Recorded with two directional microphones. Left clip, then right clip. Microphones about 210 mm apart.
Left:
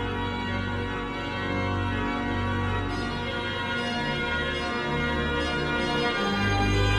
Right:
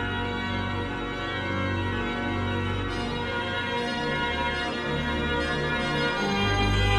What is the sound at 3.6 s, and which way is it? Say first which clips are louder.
Music: even; centre (ahead or behind).